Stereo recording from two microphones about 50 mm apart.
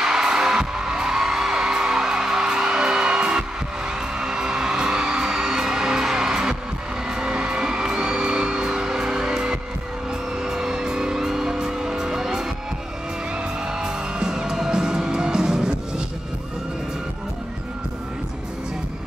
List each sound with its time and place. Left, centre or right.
0.0 s music: centre
13.7 s music: centre